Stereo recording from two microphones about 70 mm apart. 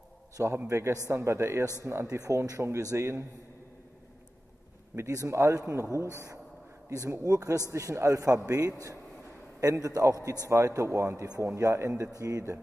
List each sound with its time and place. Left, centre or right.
0.7 s a man's voice: right
4.9 s a man's voice: right
5.9 s speech: left
6.9 s a man's voice: right